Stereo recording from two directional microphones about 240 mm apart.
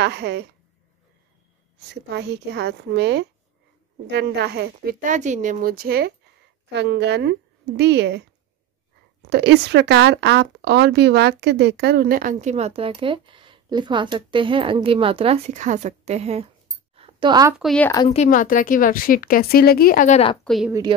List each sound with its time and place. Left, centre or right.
0.0 s a woman's voice: right
2.0 s a woman's voice: right
9.3 s speech: right
16.9 s a sound: right
17.6 s speech: centre
18.0 s a woman's voice: left
20.4 s a woman's voice: centre